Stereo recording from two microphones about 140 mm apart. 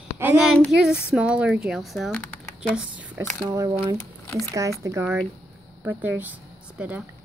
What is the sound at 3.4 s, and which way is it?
A child's voice, 25° right (ahead or behind).